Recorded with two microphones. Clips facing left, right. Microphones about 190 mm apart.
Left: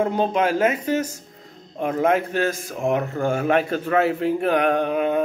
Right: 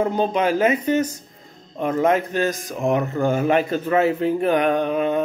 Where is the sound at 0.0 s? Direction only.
Centre (ahead or behind).